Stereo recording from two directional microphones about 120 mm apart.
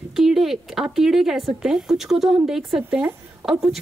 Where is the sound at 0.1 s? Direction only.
5° right (ahead or behind).